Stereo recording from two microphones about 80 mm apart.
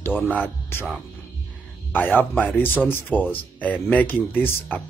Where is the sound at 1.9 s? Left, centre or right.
Left.